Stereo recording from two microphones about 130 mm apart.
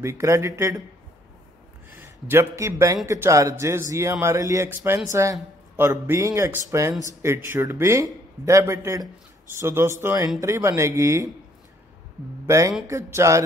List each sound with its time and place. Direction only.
0.0 s speech: 20° right (ahead or behind)
2.0 s a man's voice: 20° right (ahead or behind)
12.4 s speech: 25° right (ahead or behind)